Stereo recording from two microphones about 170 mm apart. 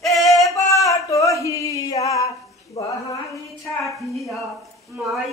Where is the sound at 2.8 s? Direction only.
35° left (ahead or behind).